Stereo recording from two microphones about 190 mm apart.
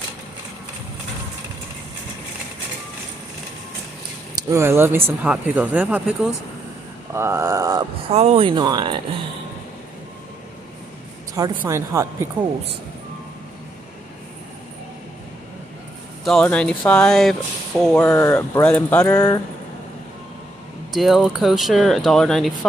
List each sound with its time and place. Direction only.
4.4 s speech: 15° right (ahead or behind)
8.1 s speech: 35° right (ahead or behind)
11.6 s speech: 15° right (ahead or behind)
16.3 s speech: 5° left (ahead or behind)
20.9 s speech: centre (ahead or behind)